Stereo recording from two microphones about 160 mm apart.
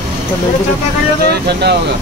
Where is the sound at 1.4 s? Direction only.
90° right.